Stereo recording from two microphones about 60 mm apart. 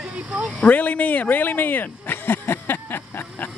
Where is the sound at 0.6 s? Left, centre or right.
Left.